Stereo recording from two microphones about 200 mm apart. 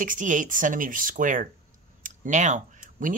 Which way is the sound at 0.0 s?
40° right (ahead or behind).